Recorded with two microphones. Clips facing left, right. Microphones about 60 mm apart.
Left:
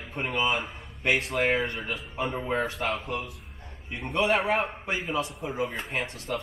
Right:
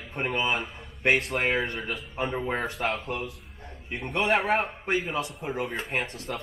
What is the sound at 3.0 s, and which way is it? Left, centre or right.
Speech, right.